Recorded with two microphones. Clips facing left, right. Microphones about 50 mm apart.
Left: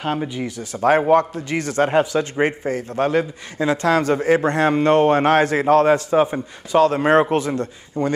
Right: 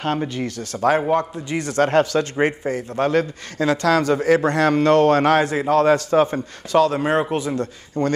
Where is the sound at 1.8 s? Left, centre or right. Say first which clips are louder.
Right 1 dB; centre.